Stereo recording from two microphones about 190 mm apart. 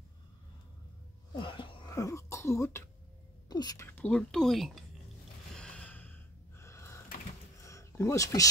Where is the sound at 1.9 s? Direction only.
15° left (ahead or behind).